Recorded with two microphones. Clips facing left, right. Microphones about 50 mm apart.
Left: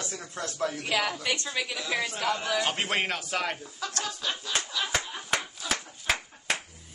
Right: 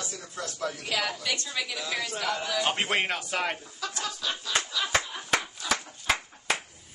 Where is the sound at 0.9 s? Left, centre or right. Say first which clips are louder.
Left 2 dB; centre.